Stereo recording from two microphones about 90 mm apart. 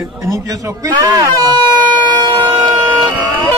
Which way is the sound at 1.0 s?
45° right (ahead or behind).